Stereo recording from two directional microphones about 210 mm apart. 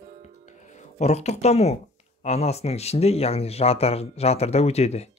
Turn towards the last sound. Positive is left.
turn(degrees=30)  # may be behind; listen again after turning